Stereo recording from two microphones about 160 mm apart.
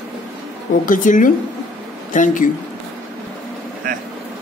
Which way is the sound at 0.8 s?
55° left (ahead or behind).